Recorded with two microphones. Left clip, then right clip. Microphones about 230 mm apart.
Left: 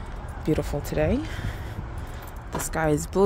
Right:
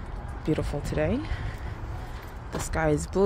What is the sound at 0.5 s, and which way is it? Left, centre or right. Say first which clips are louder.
Speech: left 3 dB; centre.